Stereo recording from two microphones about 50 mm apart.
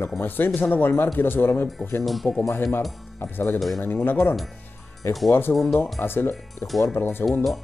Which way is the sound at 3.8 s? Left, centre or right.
Left.